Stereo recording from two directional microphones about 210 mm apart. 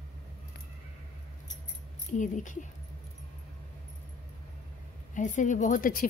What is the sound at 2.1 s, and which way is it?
Speech, 35° left (ahead or behind).